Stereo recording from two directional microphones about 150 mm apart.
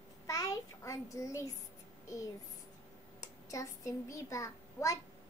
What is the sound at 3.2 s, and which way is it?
A child's voice, 20° left (ahead or behind).